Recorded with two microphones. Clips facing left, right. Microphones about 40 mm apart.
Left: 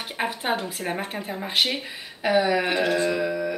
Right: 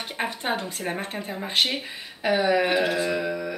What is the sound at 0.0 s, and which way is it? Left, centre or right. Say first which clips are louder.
Speech: left 1 dB; centre.